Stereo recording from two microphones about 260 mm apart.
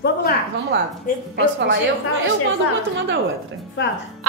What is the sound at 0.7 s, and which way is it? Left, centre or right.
Speech, right.